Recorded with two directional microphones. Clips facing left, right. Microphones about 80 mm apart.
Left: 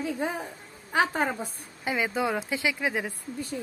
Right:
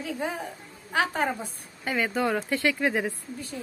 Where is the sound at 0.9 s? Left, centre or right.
Centre.